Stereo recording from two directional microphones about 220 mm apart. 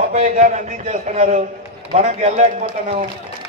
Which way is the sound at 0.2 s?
35° right (ahead or behind).